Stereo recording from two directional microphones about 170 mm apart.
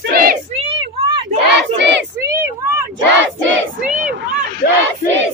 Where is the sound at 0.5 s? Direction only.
35° right (ahead or behind).